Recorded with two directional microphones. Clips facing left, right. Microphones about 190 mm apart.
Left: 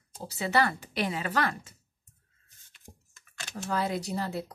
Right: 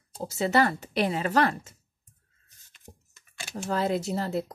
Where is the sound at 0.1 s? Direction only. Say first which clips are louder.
Right 4 dB; 40° right (ahead or behind).